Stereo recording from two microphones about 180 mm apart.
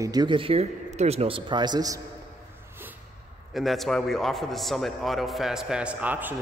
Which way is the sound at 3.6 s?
Centre (ahead or behind).